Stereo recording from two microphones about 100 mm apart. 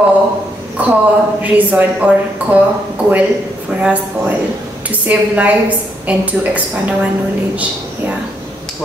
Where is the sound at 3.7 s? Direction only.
15° right (ahead or behind).